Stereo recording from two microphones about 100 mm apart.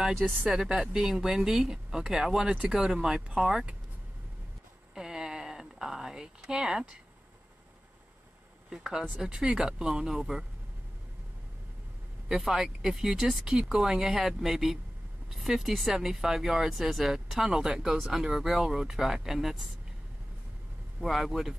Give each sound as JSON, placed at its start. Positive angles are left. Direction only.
{"t": 0.0, "sound": "speech", "side_deg": -5}
{"t": 4.9, "sound": "speech", "side_deg": -5}
{"t": 8.6, "sound": "speech", "side_deg": -5}
{"t": 12.3, "sound": "speech", "side_deg": -5}
{"t": 21.0, "sound": "speech", "side_deg": 0}